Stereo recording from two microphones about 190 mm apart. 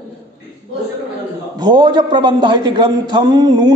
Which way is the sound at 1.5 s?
25° right (ahead or behind).